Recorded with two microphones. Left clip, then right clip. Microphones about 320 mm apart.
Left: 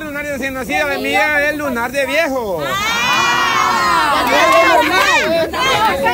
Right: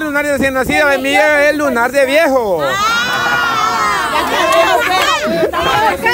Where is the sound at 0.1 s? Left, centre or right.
Centre.